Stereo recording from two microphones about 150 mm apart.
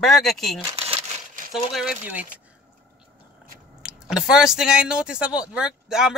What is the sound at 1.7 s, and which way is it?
Speech, 5° right (ahead or behind).